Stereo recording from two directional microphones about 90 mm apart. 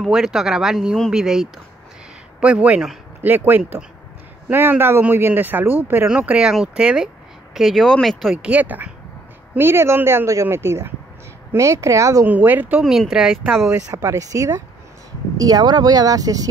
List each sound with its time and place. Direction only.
0.0 s a woman's voice: 5° right (ahead or behind); by 6.0 s 25° right (ahead or behind)
6.0 s speech: 10° right (ahead or behind)
8.4 s a woman's voice: 15° right (ahead or behind); by 12.3 s 35° right (ahead or behind)
12.3 s a woman's voice: 20° right (ahead or behind)
12.8 s speech: centre (ahead or behind)
13.7 s speech: 35° right (ahead or behind)